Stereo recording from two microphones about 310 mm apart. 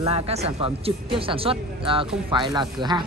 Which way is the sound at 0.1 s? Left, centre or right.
Centre.